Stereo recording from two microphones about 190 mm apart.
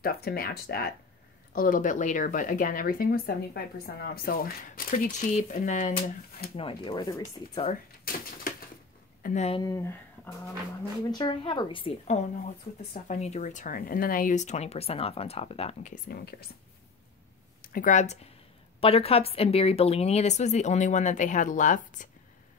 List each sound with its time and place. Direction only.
0.0 s speech: 55° left (ahead or behind)
4.9 s speech: 40° left (ahead or behind)
6.5 s speech: 30° left (ahead or behind)
8.0 s a sound: 50° left (ahead or behind)
9.2 s speech: 40° left (ahead or behind)
9.6 s speech: 15° left (ahead or behind)
11.1 s speech: 25° left (ahead or behind); by 16.4 s 55° left (ahead or behind)
17.6 s speech: 45° left (ahead or behind)